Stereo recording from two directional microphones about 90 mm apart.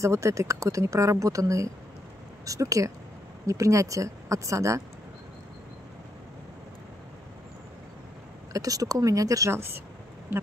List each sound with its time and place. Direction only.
0.0 s speech: 35° right (ahead or behind)
8.5 s speech: 40° right (ahead or behind)